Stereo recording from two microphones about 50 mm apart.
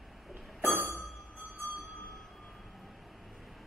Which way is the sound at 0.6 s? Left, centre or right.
Right.